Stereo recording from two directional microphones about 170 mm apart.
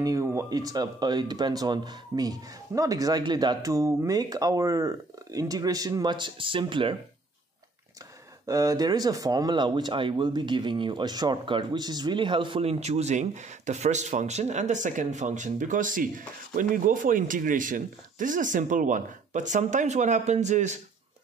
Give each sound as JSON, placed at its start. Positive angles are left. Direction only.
{"t": 0.0, "sound": "speech", "side_deg": -20}
{"t": 8.5, "sound": "speech", "side_deg": -20}